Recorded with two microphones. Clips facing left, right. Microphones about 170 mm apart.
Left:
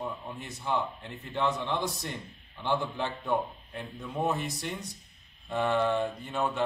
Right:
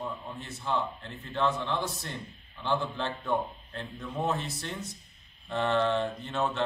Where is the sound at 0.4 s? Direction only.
15° left (ahead or behind).